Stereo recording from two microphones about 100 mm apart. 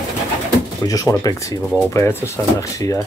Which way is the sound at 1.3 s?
35° left (ahead or behind).